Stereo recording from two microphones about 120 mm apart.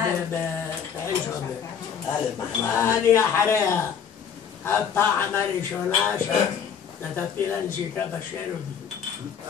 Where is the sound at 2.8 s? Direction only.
25° left (ahead or behind).